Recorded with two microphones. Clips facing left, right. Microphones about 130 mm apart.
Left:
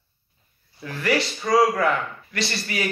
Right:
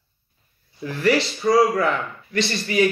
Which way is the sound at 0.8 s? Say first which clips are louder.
Right 4 dB; 30° right (ahead or behind).